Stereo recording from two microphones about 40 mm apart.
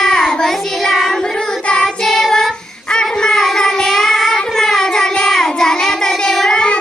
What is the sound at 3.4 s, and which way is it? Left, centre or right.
Child singing, centre.